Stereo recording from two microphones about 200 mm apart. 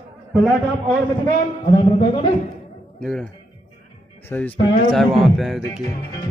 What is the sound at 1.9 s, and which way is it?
Music, 25° left (ahead or behind).